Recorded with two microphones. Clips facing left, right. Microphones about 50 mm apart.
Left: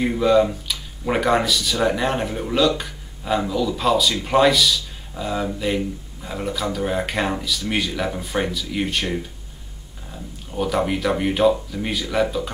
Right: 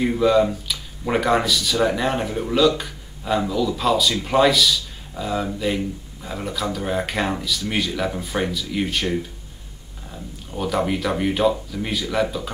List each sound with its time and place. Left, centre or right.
0.0 s speech: centre